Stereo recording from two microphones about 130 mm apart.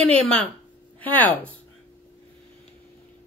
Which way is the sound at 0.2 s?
5° left (ahead or behind).